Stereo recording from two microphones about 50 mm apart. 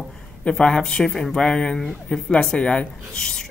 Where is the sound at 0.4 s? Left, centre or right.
Centre.